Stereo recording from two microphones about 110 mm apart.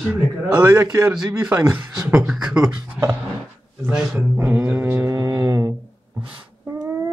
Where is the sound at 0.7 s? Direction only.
35° right (ahead or behind).